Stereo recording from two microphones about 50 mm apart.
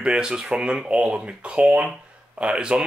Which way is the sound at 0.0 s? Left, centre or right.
Centre.